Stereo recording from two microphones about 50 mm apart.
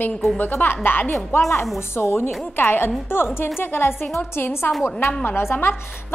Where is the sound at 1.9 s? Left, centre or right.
Left.